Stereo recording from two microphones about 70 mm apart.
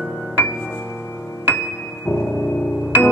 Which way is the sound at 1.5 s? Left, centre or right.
Left.